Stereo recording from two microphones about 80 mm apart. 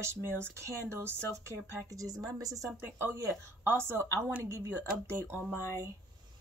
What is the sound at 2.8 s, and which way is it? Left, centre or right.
Speech, right.